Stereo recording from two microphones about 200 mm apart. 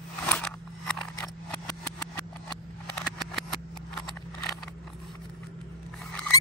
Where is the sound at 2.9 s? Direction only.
Centre (ahead or behind).